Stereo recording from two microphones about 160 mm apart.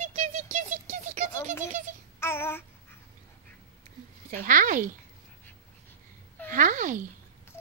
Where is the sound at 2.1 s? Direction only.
15° left (ahead or behind).